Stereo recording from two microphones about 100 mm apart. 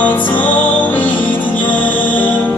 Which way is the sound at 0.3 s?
20° left (ahead or behind).